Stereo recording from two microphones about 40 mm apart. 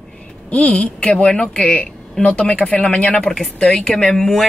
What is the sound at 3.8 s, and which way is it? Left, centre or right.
Speech, centre.